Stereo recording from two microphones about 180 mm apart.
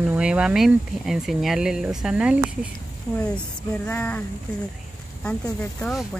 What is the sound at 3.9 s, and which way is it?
Speech, 10° left (ahead or behind).